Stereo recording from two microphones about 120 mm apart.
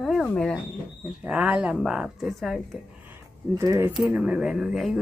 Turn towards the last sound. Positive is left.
turn(degrees=0)  # may be behind; listen again after turning